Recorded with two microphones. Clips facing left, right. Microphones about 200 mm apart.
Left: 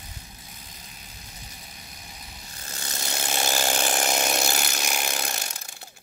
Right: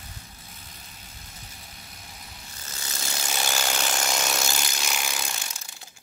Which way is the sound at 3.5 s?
35° left (ahead or behind).